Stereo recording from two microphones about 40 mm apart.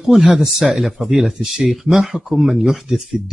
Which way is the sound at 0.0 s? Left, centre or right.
Centre.